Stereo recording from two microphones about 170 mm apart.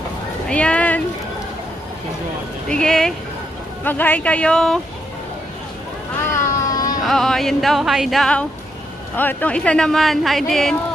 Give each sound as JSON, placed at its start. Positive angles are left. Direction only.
{"t": 0.5, "sound": "a sound", "side_deg": 5}
{"t": 2.7, "sound": "speech", "side_deg": 5}
{"t": 6.3, "sound": "cat", "side_deg": 20}
{"t": 7.0, "sound": "speech", "side_deg": 0}